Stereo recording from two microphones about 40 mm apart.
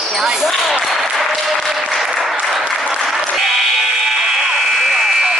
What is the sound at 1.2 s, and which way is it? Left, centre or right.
Applause, centre.